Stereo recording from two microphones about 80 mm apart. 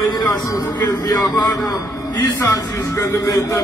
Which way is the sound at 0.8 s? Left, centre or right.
Left.